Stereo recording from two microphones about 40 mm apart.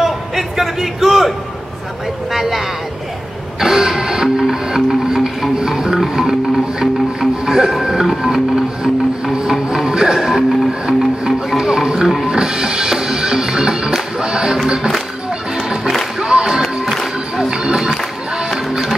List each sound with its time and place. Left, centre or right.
0.0 s a sound: centre
3.6 s music: centre
16.2 s music: centre